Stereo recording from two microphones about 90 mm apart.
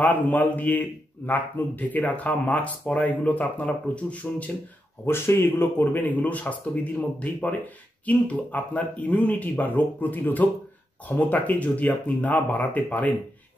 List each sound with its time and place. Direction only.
0.0 s a man's voice: 20° left (ahead or behind)
5.0 s a man's voice: 25° left (ahead or behind)